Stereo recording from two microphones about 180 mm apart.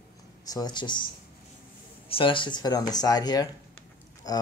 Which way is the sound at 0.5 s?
20° left (ahead or behind).